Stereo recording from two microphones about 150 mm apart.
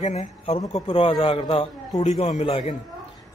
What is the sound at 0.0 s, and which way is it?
A man's voice, 45° left (ahead or behind).